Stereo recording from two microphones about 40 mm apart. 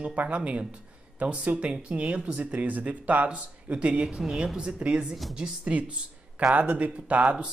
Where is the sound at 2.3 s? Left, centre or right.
Right.